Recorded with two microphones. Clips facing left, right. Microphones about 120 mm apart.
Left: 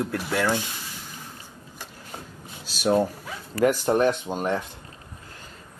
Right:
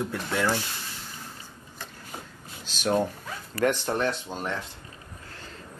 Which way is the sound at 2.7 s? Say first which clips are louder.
Left 3 dB; 10° left (ahead or behind).